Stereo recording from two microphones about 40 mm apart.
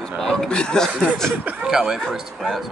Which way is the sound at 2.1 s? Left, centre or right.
Centre.